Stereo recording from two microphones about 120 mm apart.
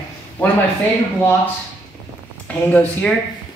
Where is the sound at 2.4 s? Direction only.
10° left (ahead or behind).